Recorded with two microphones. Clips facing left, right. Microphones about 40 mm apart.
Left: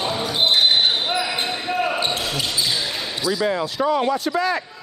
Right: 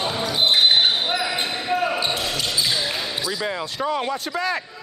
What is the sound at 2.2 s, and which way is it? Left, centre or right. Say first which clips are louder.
Basketball bounce: even; centre.